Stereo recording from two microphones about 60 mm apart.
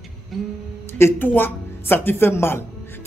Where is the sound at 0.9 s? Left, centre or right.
Left.